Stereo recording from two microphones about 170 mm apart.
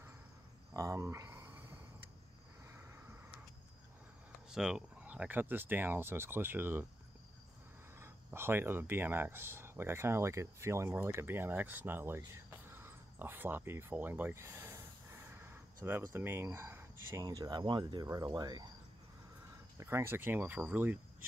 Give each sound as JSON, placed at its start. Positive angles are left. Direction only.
{"t": 0.7, "sound": "a sound", "side_deg": -15}
{"t": 4.5, "sound": "speech", "side_deg": -5}
{"t": 8.0, "sound": "speech", "side_deg": -15}
{"t": 19.8, "sound": "speech", "side_deg": -15}